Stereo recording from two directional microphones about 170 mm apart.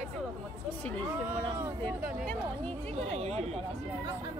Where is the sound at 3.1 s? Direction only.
40° right (ahead or behind).